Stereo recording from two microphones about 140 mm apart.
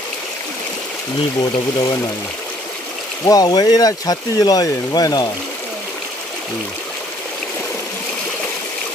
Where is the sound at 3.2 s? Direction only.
25° left (ahead or behind).